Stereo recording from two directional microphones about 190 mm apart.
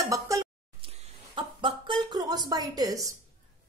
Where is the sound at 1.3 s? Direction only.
25° right (ahead or behind).